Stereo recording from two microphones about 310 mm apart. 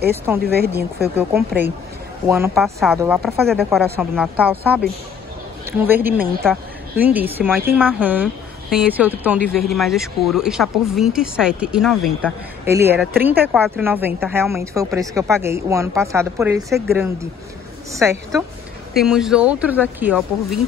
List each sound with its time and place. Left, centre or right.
0.4 s speech: right
2.2 s a woman's voice: centre
18.9 s a woman's voice: centre